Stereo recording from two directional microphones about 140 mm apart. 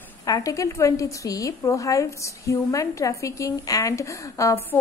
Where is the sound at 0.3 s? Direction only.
25° left (ahead or behind).